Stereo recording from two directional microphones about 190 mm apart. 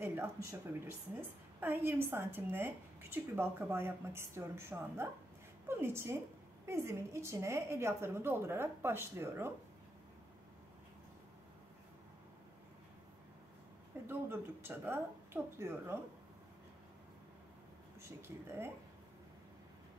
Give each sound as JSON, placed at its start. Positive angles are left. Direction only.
{"t": 0.0, "sound": "a woman's voice", "side_deg": -10}
{"t": 14.0, "sound": "a woman's voice", "side_deg": -10}
{"t": 18.0, "sound": "a woman's voice", "side_deg": -10}